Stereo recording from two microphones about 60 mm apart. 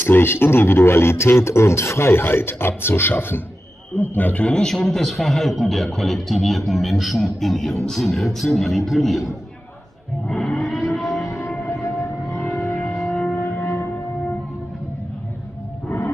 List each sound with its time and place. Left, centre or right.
0.0 s a man's voice: left
4.5 s a man's voice: centre
10.2 s a sound: centre
11.7 s civil defense siren: left
12.4 s music: centre
13.4 s a sound: left